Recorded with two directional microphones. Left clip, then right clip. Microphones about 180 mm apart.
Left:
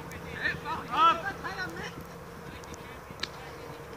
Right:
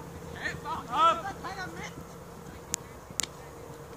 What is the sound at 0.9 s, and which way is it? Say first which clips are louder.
Speech: left 1 dB; 35° right (ahead or behind).